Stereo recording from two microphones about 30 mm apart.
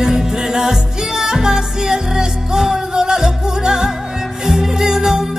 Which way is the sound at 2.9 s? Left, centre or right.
Right.